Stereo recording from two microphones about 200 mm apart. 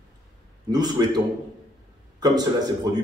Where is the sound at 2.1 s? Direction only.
20° right (ahead or behind).